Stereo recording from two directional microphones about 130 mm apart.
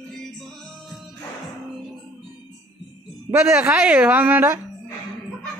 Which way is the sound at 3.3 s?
20° right (ahead or behind).